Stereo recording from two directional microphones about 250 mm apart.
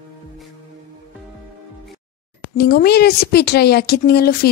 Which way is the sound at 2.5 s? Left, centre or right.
Left.